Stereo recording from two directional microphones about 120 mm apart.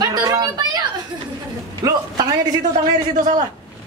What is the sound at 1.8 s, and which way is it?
Speech, 35° right (ahead or behind).